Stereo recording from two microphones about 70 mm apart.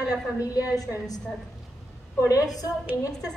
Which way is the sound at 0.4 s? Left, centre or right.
Left.